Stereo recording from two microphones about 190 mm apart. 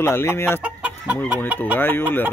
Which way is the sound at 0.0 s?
10° left (ahead or behind).